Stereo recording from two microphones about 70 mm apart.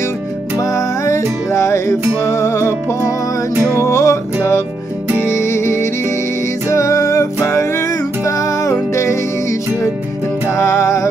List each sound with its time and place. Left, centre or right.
0.6 s music: left